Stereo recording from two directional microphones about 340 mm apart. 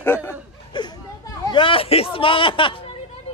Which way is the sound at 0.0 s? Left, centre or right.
Centre.